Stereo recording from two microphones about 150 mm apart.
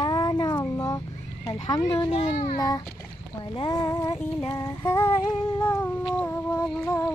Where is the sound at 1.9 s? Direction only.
35° left (ahead or behind).